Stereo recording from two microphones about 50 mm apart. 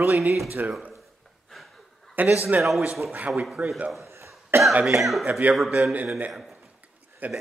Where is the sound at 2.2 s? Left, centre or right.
Right.